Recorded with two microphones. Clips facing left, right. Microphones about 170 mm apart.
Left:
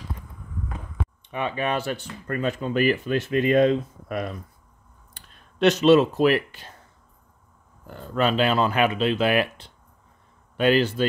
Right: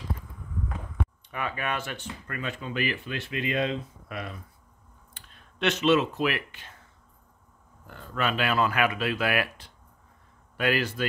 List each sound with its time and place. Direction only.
1.3 s speech: 25° left (ahead or behind)
7.8 s speech: 35° left (ahead or behind)